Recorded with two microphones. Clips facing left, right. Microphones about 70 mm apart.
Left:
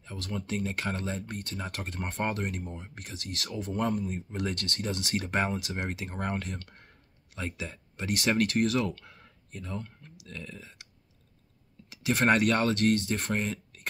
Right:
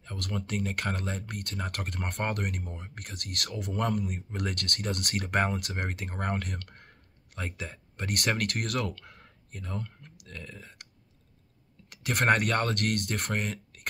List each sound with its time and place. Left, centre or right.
0.0 s speech: right
6.3 s speech: right
7.3 s speech: right
10.2 s speech: right
11.9 s speech: right